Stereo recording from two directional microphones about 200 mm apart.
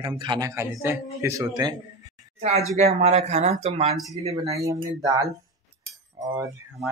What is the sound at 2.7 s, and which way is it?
Speech, 35° right (ahead or behind).